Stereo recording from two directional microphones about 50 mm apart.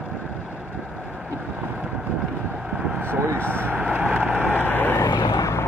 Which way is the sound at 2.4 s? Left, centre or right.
Centre.